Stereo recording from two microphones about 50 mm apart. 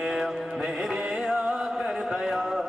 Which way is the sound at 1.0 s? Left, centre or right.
Right.